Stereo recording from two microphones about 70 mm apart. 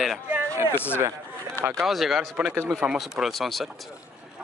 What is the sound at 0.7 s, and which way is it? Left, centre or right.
Speech, left.